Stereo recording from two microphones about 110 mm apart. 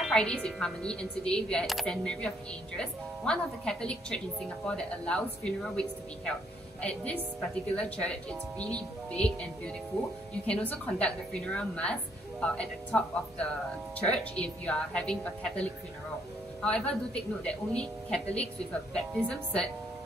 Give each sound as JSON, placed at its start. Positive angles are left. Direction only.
{"t": 0.1, "sound": "speech", "side_deg": 10}